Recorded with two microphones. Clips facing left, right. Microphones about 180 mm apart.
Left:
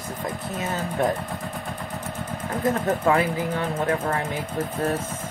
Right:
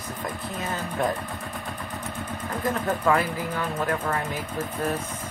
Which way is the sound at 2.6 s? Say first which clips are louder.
Left 3 dB; 25° left (ahead or behind).